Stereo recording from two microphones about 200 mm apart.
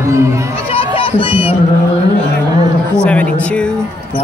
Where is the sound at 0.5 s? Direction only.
30° left (ahead or behind).